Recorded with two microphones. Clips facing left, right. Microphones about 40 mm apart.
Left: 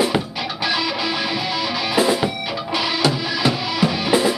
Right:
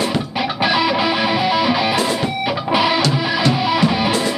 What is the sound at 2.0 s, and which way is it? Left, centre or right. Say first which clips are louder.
Music: left 2 dB; centre.